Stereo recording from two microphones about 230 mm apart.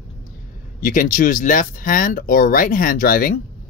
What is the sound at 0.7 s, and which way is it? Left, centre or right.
Speech, left.